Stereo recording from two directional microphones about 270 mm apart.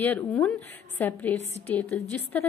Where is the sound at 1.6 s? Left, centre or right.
Centre.